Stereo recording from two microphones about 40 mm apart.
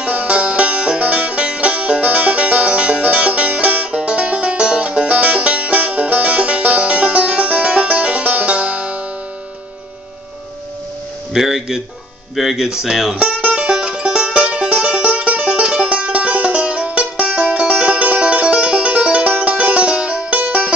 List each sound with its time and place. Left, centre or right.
0.0 s music: right
11.3 s music: centre
12.4 s speech: centre
13.2 s music: right